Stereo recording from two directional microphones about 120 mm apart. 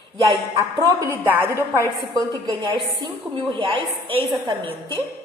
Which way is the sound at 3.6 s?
45° right (ahead or behind).